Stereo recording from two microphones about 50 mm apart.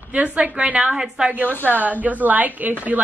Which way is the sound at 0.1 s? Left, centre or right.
Right.